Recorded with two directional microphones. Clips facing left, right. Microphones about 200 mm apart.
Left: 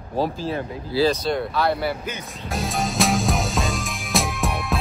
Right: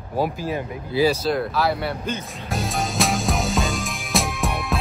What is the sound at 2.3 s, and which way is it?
Music, centre (ahead or behind).